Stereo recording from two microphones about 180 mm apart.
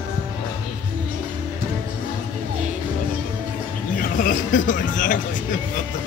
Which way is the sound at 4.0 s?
45° left (ahead or behind).